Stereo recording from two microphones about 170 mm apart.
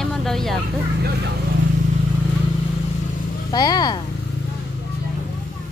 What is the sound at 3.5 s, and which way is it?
Speech, 25° left (ahead or behind).